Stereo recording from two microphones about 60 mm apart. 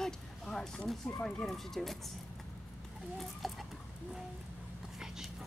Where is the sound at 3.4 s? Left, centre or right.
Centre.